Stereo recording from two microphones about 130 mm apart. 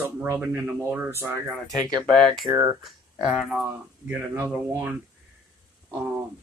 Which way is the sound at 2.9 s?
Centre (ahead or behind).